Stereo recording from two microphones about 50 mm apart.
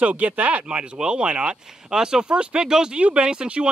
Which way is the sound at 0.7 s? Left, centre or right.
Centre.